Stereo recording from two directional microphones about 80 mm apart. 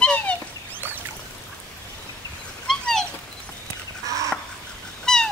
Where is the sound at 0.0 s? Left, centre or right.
Centre.